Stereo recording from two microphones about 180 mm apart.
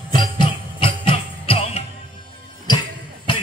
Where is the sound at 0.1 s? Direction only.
25° left (ahead or behind).